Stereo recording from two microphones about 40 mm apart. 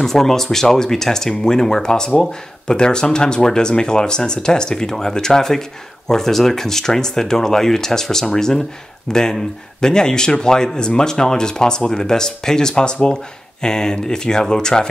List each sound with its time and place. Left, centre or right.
0.0 s speech: centre